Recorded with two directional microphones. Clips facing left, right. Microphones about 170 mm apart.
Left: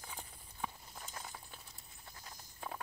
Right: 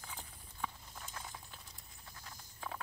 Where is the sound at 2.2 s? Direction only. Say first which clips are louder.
Even; 20° left (ahead or behind).